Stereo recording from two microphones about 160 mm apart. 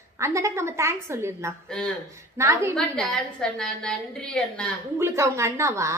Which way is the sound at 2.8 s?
5° left (ahead or behind).